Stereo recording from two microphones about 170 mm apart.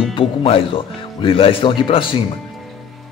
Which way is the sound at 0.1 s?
30° left (ahead or behind).